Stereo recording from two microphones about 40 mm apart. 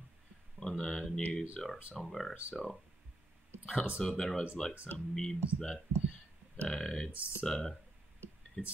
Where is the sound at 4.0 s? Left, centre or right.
Centre.